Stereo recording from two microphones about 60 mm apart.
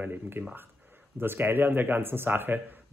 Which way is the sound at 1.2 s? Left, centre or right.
Right.